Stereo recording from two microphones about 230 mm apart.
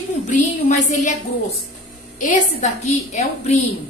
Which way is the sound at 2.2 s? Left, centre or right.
Left.